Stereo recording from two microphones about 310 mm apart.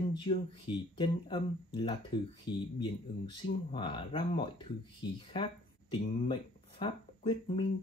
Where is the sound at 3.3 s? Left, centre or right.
Centre.